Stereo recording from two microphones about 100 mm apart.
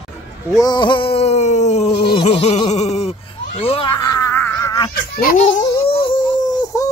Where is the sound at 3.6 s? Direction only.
75° left (ahead or behind).